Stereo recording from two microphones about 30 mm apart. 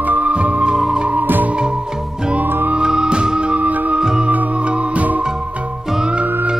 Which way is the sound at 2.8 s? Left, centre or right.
Right.